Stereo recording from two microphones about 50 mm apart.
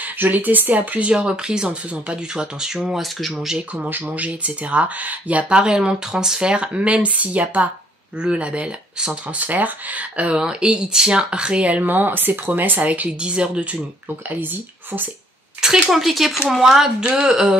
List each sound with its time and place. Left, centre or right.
0.0 s speech: right
1.1 s speech: centre
2.9 s speech: centre
3.3 s speech: centre
3.9 s speech: right
5.6 s speech: centre
10.3 s speech: centre
13.2 s speech: right
14.4 s speech: right
15.6 s speech: centre